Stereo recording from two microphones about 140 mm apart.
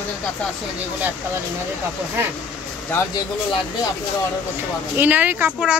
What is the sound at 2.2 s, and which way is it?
Speech, 20° right (ahead or behind).